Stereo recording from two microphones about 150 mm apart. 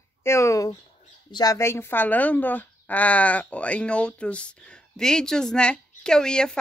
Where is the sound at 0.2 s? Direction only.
20° left (ahead or behind).